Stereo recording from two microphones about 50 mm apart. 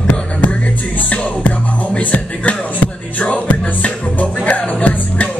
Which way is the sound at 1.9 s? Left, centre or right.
Left.